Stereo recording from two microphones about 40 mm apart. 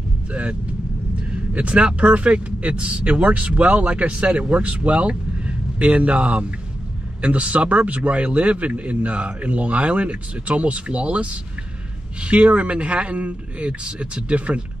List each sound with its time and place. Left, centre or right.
0.3 s speech: right
1.3 s vehicle: right
1.8 s speech: right